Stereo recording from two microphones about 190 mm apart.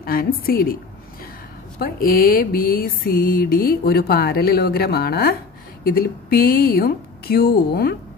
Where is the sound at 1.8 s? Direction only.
50° left (ahead or behind).